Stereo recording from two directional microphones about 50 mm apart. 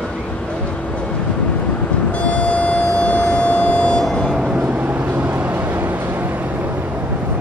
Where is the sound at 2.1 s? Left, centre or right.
Left.